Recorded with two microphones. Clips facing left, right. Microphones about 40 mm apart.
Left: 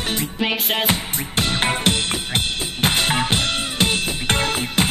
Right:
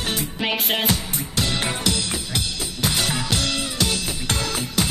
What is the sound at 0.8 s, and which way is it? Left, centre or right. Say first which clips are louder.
Music: left 2 dB; left.